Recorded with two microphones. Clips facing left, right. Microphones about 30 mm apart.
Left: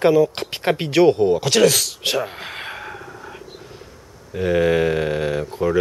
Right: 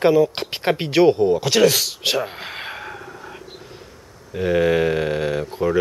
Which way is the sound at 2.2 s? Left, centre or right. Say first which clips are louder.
Even; centre.